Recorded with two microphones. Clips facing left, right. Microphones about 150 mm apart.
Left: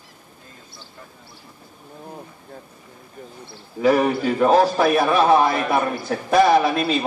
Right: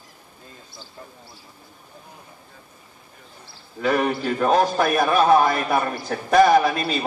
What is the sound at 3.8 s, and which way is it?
A man's voice, 10° left (ahead or behind).